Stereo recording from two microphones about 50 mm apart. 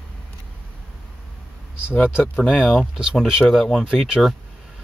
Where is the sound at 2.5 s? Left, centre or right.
Left.